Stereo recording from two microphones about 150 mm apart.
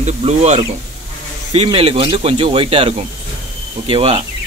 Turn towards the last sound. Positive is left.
turn(degrees=-40)  # may be behind; listen again after turning